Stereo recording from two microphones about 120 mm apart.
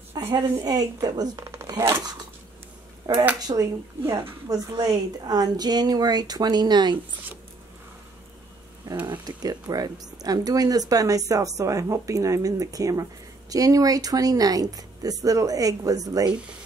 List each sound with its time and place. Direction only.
0.3 s speech: 35° right (ahead or behind)
3.3 s speech: 30° right (ahead or behind)
9.0 s speech: 35° right (ahead or behind)